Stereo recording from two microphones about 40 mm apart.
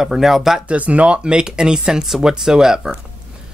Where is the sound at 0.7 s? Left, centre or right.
Right.